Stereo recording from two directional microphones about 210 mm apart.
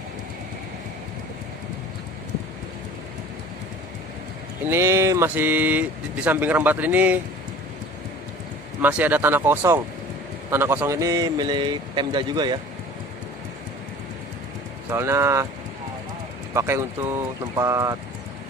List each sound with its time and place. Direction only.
4.6 s speech: 10° right (ahead or behind)
8.8 s a man's voice: 10° right (ahead or behind)
14.9 s speech: 15° right (ahead or behind)
16.5 s speech: 10° right (ahead or behind)